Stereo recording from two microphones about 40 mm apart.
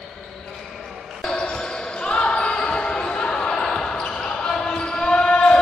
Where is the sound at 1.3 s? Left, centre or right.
Left.